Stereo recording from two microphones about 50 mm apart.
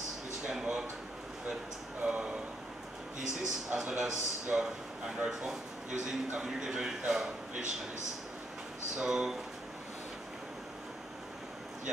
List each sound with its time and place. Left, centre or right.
0.5 s speech: centre
2.0 s speech: centre
3.7 s speech: centre
8.9 s speech: centre